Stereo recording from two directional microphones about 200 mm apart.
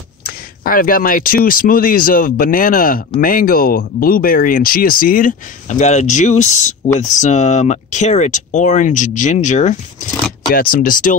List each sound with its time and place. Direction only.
0.2 s speech: 45° left (ahead or behind)